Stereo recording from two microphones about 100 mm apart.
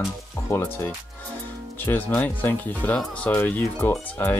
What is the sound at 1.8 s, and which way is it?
Speech, 20° left (ahead or behind).